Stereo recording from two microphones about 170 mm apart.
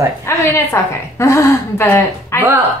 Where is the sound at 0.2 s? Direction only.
15° left (ahead or behind).